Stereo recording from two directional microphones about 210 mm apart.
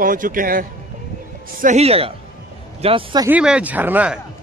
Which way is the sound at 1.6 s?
30° right (ahead or behind).